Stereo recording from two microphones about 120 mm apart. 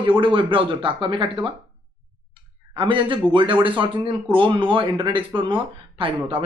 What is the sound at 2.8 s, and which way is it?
Speech, 45° right (ahead or behind).